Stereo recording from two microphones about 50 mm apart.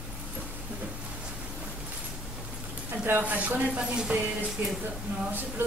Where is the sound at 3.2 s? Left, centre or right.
Right.